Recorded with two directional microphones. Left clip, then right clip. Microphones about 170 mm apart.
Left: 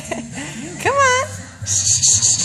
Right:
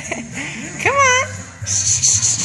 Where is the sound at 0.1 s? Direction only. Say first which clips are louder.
Right 1 dB; 20° left (ahead or behind).